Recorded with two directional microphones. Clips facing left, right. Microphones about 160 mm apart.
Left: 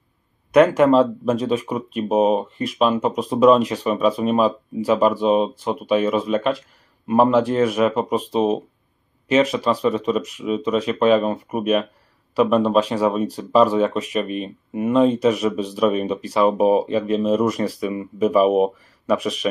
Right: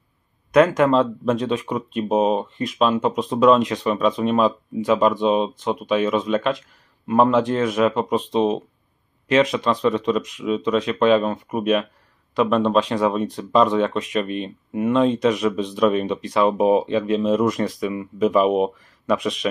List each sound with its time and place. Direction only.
0.5 s speech: 5° left (ahead or behind)